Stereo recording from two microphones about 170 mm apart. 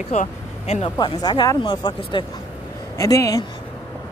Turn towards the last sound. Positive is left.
turn(degrees=20)  # may be behind; listen again after turning